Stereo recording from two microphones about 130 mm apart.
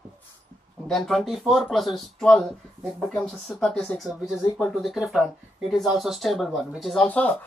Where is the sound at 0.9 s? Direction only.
Centre (ahead or behind).